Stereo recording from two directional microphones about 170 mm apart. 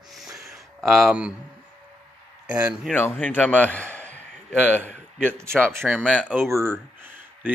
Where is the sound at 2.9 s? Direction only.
10° left (ahead or behind).